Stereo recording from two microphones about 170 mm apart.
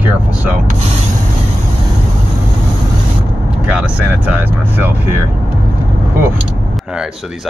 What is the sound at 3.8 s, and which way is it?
Speech, 5° right (ahead or behind).